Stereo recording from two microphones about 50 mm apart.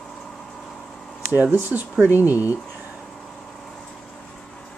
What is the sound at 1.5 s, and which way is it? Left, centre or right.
Speech, right.